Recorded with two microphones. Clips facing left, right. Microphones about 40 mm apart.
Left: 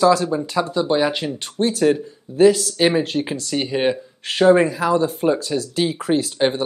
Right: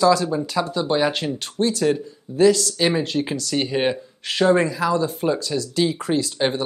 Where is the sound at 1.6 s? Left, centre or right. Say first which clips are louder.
Left 3 dB; centre.